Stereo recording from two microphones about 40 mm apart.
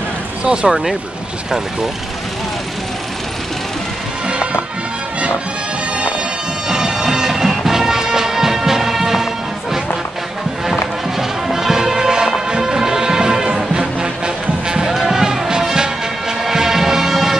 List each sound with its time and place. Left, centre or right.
0.5 s speech: right
4.3 s music: right
6.7 s music: centre
14.9 s music: centre